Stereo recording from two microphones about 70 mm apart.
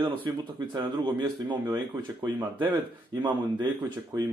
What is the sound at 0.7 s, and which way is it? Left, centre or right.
Speech, right.